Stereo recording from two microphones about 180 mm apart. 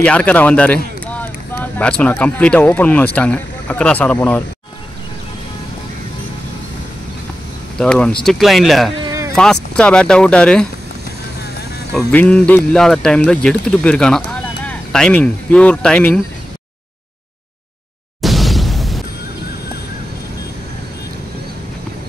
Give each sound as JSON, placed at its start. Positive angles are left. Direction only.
{"t": 0.0, "sound": "speech", "side_deg": 5}
{"t": 7.8, "sound": "speech", "side_deg": 5}
{"t": 9.0, "sound": "a sound", "side_deg": -15}
{"t": 9.3, "sound": "speech", "side_deg": 5}
{"t": 11.9, "sound": "speech", "side_deg": 5}
{"t": 18.2, "sound": "a sound", "side_deg": 0}